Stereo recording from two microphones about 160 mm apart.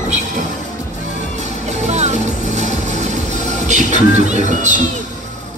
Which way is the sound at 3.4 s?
45° right (ahead or behind).